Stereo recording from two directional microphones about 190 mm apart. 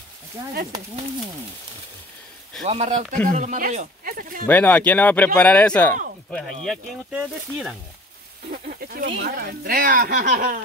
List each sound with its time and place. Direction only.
2.6 s a man's voice: 35° right (ahead or behind)
4.5 s speech: 10° left (ahead or behind)
8.5 s speech: 50° right (ahead or behind)